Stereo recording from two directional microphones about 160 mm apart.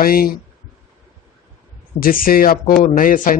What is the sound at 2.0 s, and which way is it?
Speech, 65° left (ahead or behind).